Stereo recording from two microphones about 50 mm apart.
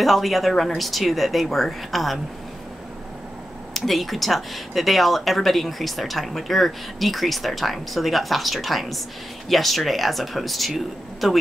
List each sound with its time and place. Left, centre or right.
0.0 s speech: centre
3.7 s speech: centre